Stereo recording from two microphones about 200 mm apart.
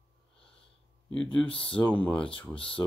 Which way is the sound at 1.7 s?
5° left (ahead or behind).